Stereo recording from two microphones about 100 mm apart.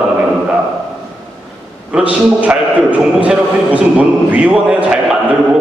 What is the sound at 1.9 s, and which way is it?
A man's voice, 10° right (ahead or behind).